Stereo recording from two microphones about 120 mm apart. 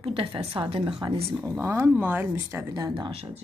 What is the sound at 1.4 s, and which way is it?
Speech, 20° right (ahead or behind).